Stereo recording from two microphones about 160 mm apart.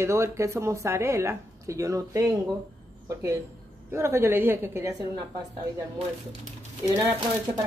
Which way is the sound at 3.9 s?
15° right (ahead or behind).